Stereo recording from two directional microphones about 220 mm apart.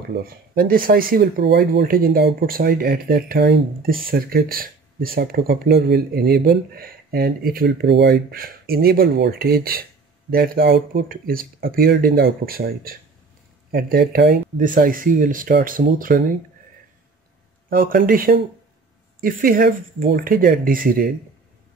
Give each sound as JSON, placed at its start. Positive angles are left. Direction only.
{"t": 0.2, "sound": "speech", "side_deg": -40}
{"t": 17.6, "sound": "speech", "side_deg": -40}